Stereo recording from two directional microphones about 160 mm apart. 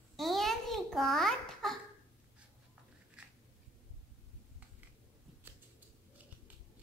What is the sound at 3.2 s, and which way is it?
Biting, 5° right (ahead or behind).